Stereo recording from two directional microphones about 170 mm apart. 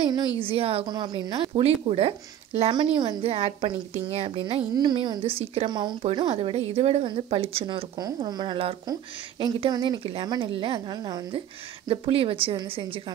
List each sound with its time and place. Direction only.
0.0 s a woman's voice: 25° right (ahead or behind)
5.7 s a woman's voice: 25° right (ahead or behind)